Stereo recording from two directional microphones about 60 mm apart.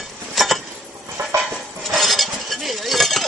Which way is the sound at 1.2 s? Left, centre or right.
Right.